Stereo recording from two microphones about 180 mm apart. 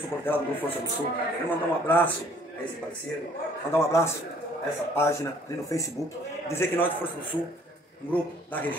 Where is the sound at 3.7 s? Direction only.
15° left (ahead or behind).